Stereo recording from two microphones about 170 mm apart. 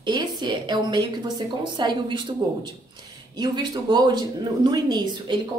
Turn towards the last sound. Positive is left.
turn(degrees=-25)  # may be behind; listen again after turning